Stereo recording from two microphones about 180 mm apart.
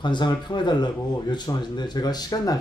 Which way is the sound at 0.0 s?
25° left (ahead or behind).